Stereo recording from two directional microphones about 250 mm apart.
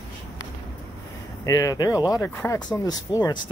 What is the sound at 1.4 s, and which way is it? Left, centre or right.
Speech, centre.